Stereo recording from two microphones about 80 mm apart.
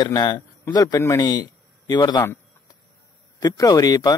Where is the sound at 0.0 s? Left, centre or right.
Left.